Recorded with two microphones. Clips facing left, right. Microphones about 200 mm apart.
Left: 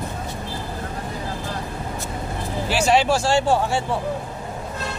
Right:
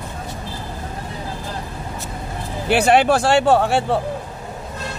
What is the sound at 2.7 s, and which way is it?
Speech, 60° right (ahead or behind).